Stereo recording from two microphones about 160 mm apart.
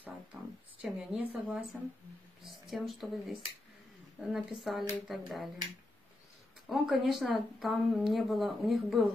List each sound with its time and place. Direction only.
0.3 s speech: 10° right (ahead or behind)
0.8 s speech: centre (ahead or behind)
6.7 s speech: centre (ahead or behind)